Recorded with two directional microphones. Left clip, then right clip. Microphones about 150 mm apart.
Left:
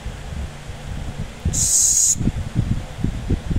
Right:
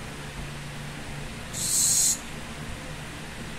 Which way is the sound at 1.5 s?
45° left (ahead or behind).